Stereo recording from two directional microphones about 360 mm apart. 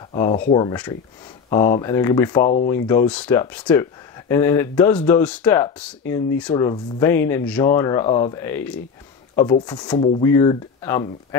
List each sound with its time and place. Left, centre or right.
0.1 s speech: centre
2.4 s speech: left
2.9 s speech: centre